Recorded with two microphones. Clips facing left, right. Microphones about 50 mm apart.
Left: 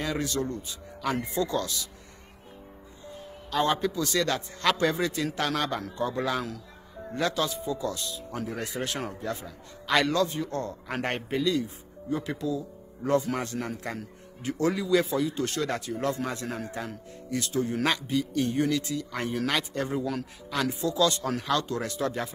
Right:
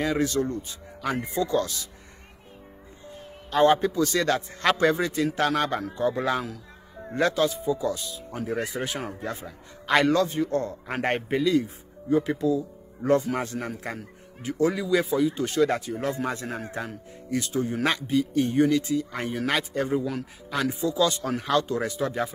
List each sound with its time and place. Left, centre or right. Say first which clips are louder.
0.2 s speech: right 5 dB; right
1.0 s speech: right 1 dB; centre
1.4 s speech: right 5 dB; right
3.5 s a man's voice: right 6 dB; right
7.4 s a man's voice: right 5 dB; centre
9.2 s a man's voice: even; right
13.3 s speech: right 2 dB; centre
13.9 s a man's voice: even; centre
20.0 s speech: right 1 dB; centre
20.8 s a man's voice: right 1 dB; right